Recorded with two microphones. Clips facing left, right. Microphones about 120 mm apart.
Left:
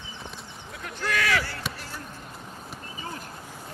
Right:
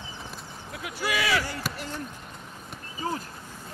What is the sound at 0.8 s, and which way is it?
Speech, 10° right (ahead or behind).